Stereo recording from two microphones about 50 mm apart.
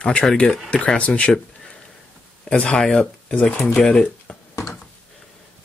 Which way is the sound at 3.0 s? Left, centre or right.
Left.